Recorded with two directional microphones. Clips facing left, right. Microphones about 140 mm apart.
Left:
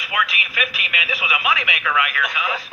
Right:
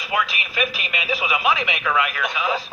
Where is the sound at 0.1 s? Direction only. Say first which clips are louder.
Right 1 dB; 30° right (ahead or behind).